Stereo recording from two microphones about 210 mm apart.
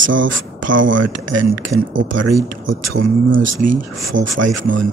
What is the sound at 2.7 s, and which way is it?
Speech, 70° right (ahead or behind).